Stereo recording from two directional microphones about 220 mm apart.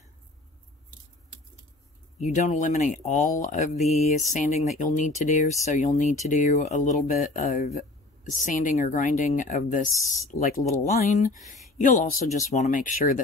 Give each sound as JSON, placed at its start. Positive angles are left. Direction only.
{"t": 2.1, "sound": "speech", "side_deg": 35}